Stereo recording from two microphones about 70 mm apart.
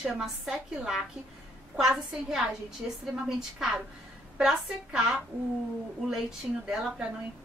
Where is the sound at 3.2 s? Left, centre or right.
Centre.